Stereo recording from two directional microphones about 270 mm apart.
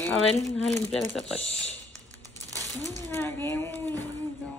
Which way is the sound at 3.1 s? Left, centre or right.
Centre.